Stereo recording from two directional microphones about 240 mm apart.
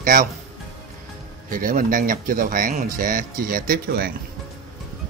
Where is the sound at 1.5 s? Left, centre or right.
Right.